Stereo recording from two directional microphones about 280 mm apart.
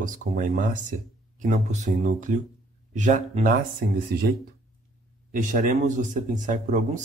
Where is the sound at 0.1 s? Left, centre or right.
Right.